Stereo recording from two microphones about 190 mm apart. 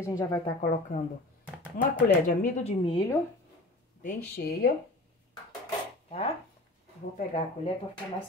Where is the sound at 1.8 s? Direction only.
55° left (ahead or behind).